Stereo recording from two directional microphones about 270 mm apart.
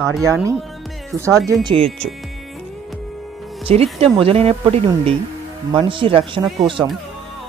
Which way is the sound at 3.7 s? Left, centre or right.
Right.